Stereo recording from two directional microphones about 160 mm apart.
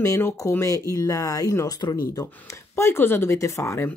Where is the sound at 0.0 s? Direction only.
20° left (ahead or behind).